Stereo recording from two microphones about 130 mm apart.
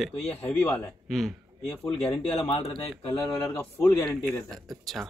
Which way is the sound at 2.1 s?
45° left (ahead or behind).